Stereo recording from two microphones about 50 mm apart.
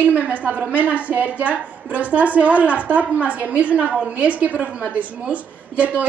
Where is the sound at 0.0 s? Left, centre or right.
Right.